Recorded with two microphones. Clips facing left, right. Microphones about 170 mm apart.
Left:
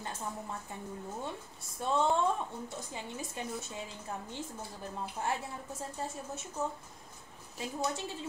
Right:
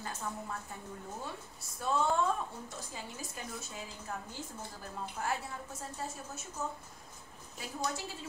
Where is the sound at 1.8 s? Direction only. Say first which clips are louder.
Left 2 dB; 25° left (ahead or behind).